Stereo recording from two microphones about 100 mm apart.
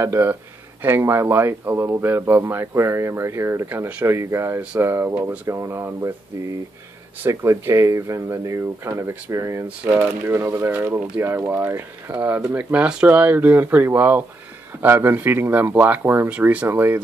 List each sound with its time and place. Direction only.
0.0 s speech: 25° right (ahead or behind)
7.2 s speech: 30° right (ahead or behind)